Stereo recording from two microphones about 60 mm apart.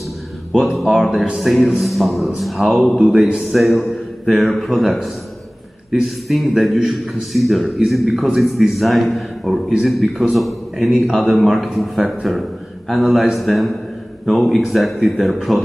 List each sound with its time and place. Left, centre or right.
0.6 s a man's voice: centre
1.1 s speech: centre
1.4 s a man's voice: centre
3.2 s a man's voice: centre
3.4 s a man's voice: centre